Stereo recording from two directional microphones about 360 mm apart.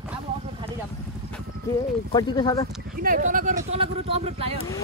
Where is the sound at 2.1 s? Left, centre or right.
Centre.